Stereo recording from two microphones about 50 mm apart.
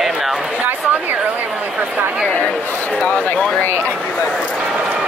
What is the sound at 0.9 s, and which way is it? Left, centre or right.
Speech, right.